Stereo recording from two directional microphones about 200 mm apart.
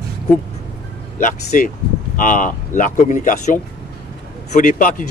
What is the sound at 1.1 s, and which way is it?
Speech, 40° left (ahead or behind).